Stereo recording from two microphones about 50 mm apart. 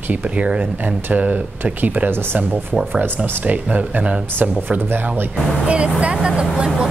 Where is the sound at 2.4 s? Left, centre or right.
Right.